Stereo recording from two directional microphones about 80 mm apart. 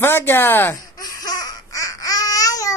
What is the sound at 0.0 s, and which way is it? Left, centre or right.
Speech, left.